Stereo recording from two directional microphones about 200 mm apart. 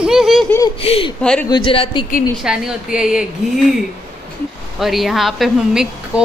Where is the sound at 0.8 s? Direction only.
30° left (ahead or behind).